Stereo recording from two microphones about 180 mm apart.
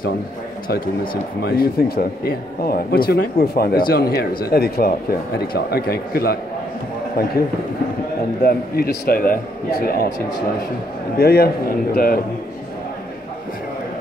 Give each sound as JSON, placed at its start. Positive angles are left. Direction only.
{"t": 1.4, "sound": "speech", "side_deg": 55}
{"t": 8.4, "sound": "speech", "side_deg": 60}
{"t": 11.1, "sound": "speech", "side_deg": 60}